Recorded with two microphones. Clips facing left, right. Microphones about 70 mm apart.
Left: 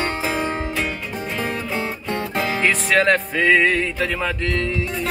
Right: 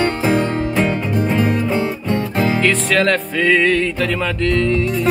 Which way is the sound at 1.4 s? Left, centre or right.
Right.